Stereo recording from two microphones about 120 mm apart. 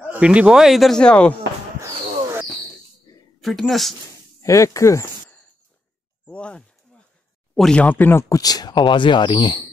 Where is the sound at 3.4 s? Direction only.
Centre (ahead or behind).